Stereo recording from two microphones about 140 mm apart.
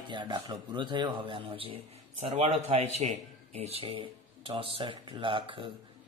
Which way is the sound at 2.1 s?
55° right (ahead or behind).